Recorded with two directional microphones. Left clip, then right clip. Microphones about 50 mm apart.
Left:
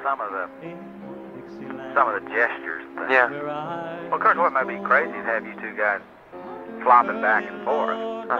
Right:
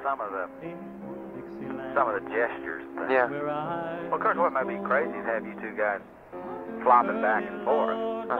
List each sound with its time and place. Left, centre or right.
0.0 s speech: right
1.7 s speech: right
2.1 s speech: right
3.3 s music: centre
4.1 s speech: right
6.8 s speech: right